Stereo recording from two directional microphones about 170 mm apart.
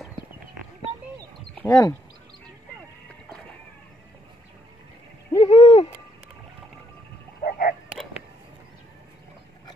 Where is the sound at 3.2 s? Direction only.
5° left (ahead or behind).